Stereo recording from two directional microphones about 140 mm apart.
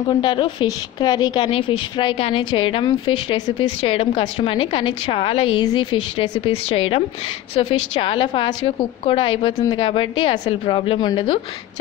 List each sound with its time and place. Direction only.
0.1 s a woman's voice: 35° left (ahead or behind)